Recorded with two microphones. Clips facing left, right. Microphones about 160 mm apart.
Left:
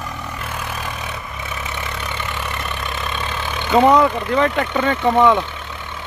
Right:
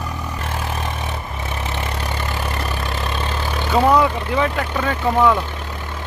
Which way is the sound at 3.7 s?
5° right (ahead or behind).